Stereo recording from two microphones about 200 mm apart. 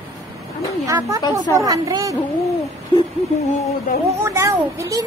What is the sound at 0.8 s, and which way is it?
Speech, 15° right (ahead or behind).